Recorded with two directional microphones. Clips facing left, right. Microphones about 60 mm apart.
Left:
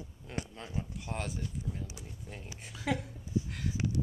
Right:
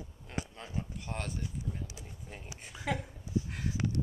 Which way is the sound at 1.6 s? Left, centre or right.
Centre.